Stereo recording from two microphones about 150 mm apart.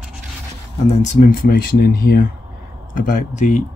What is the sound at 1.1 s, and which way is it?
Speech, 70° left (ahead or behind).